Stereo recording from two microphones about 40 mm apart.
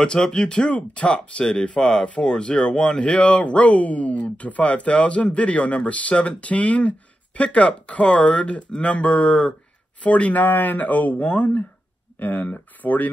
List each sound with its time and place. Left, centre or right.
0.0 s speech: centre; by 11.6 s left
12.2 s speech: left